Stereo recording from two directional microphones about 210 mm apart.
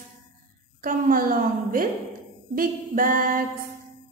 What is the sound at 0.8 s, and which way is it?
A woman's voice, 40° right (ahead or behind).